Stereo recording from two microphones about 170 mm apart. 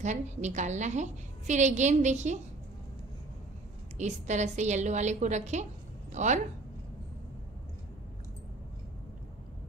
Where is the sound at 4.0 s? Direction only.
45° right (ahead or behind).